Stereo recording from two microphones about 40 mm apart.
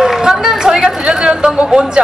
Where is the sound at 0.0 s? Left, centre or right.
Centre.